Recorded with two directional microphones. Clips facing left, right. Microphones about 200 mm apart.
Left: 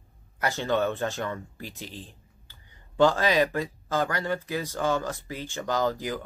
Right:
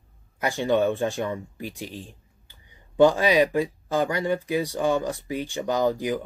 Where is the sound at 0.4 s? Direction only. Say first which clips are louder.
Right 4 dB; 15° right (ahead or behind).